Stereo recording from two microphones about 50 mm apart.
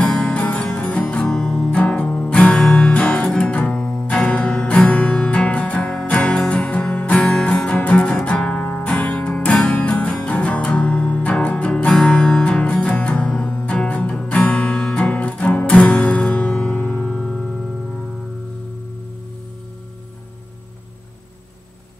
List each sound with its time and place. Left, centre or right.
0.0 s music: left
1.2 s music: centre
2.9 s music: left; by 4.0 s centre
4.1 s music: left
7.2 s music: centre
9.8 s music: left; by 17.6 s centre